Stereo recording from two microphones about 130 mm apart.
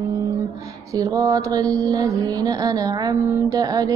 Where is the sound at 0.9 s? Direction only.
25° right (ahead or behind).